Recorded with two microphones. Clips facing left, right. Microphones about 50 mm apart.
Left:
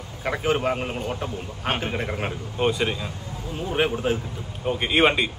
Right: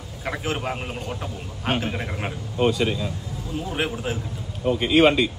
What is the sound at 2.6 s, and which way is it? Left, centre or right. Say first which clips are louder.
Speech: right 2 dB; centre.